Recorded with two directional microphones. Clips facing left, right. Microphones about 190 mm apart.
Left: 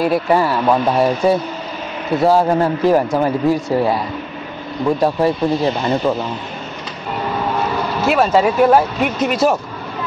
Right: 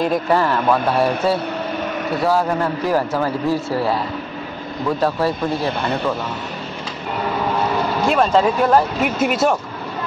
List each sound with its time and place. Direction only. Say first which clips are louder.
0.0 s speech: left 2 dB; 10° left (ahead or behind)
2.2 s a man's voice: left 5 dB; 25° left (ahead or behind)
5.0 s speech: left 3 dB; 15° left (ahead or behind)
5.7 s speech: left 4 dB; 60° right (ahead or behind)
8.1 s speech: left 2 dB; 5° left (ahead or behind)